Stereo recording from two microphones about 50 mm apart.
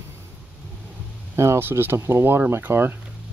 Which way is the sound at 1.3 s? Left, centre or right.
Right.